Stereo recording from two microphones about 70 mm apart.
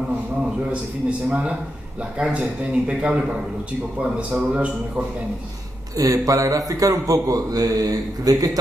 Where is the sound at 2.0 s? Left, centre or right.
Centre.